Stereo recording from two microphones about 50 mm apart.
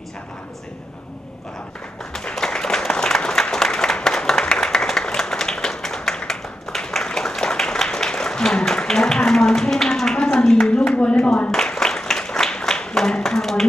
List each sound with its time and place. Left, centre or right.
2.3 s applause: centre
11.0 s a sound: centre
11.5 s applause: centre